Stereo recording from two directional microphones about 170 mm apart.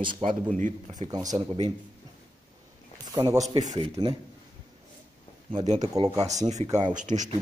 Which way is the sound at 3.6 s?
40° right (ahead or behind).